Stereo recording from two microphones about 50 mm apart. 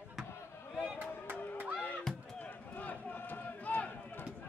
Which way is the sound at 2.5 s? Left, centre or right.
Left.